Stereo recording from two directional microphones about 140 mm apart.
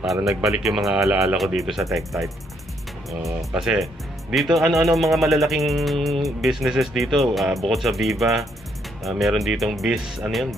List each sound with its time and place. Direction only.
0.0 s speech: centre (ahead or behind)
3.5 s speech: 5° right (ahead or behind)